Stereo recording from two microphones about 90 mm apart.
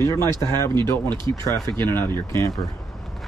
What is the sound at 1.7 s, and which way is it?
Speech, 25° left (ahead or behind).